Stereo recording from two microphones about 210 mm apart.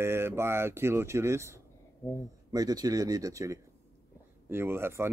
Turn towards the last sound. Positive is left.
turn(degrees=-10)  # may be behind; listen again after turning